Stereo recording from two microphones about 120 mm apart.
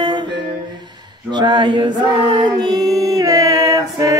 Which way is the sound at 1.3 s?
40° right (ahead or behind).